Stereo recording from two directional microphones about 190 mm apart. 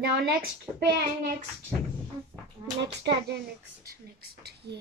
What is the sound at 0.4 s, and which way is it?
Speech, 60° right (ahead or behind).